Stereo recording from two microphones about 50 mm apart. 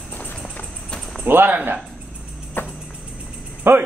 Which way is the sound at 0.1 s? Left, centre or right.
Left.